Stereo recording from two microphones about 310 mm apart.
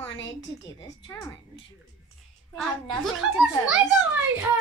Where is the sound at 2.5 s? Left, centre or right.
Centre.